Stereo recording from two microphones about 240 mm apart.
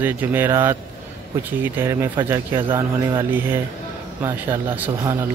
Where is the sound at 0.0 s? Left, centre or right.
Centre.